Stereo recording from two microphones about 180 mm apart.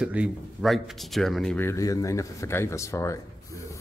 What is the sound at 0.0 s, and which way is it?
Speech, 5° right (ahead or behind).